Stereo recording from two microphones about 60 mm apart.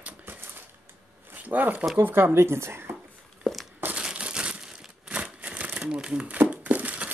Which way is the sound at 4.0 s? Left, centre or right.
Centre.